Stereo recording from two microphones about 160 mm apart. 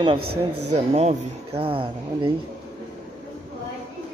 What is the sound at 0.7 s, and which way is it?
Speech, 40° right (ahead or behind).